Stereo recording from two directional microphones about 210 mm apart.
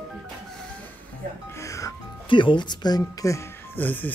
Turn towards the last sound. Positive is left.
turn(degrees=10)  # may be behind; listen again after turning